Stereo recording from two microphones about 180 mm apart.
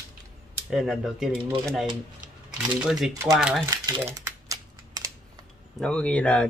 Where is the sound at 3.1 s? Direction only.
20° right (ahead or behind).